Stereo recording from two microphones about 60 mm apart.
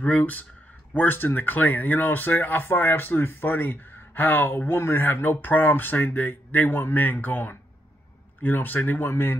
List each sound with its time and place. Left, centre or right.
0.0 s speech: left